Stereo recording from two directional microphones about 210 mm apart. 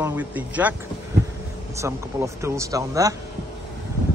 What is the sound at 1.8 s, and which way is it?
Speech, 15° right (ahead or behind).